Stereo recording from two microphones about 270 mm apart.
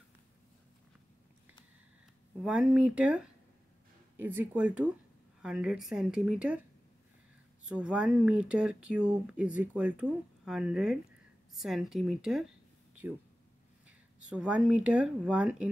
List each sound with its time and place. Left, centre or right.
2.4 s speech: centre
7.6 s speech: centre